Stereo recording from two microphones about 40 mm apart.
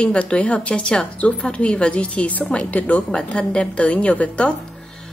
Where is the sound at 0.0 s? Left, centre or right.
Left.